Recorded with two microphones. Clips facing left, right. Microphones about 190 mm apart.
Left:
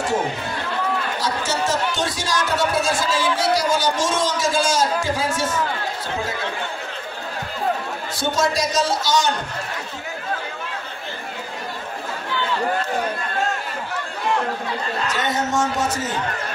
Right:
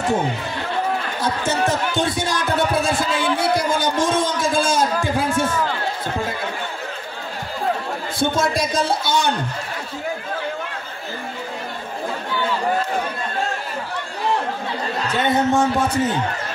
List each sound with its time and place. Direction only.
1.2 s speech: 60° right (ahead or behind)
8.2 s a man's voice: 55° right (ahead or behind)
15.0 s a man's voice: 60° right (ahead or behind)